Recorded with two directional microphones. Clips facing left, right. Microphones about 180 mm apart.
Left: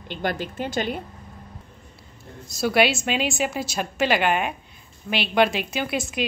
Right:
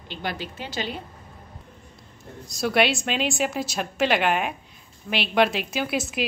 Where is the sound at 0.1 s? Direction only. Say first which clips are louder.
Left 4 dB; 50° left (ahead or behind).